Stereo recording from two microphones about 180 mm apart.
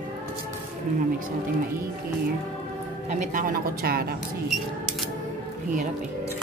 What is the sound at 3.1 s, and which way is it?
Speech, 50° right (ahead or behind).